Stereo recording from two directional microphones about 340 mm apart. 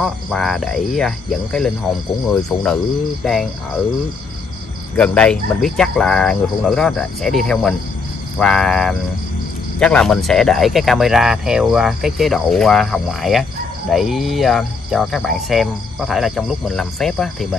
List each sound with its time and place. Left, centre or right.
0.0 s speech: centre
4.9 s speech: centre